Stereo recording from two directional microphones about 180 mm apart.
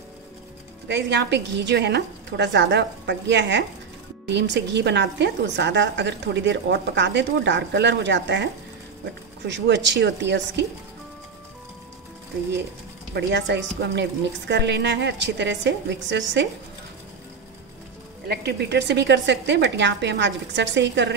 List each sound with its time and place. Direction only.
0.8 s a woman's voice: 70° right (ahead or behind)
9.5 s speech: 80° right
13.1 s a woman's voice: 80° right
18.3 s a woman's voice: 65° right (ahead or behind)